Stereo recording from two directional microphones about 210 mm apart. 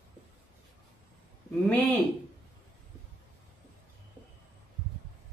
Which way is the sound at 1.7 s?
10° left (ahead or behind).